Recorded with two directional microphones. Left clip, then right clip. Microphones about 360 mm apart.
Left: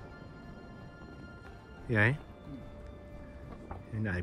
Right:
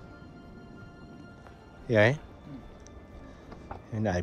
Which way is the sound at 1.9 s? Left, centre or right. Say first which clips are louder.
Right 6 dB; centre.